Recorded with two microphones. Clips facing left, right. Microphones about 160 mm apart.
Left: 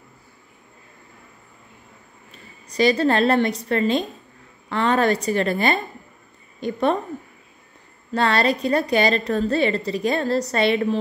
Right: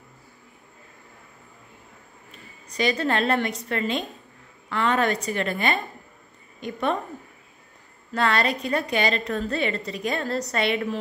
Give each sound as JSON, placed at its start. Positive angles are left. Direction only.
{"t": 2.8, "sound": "a woman's voice", "side_deg": 35}
{"t": 8.1, "sound": "a woman's voice", "side_deg": 35}